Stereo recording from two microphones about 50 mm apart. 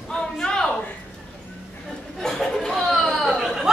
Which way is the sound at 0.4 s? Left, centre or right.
Centre.